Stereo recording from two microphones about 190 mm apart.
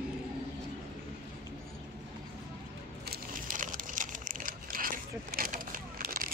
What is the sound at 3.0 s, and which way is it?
Crumpling, 50° right (ahead or behind).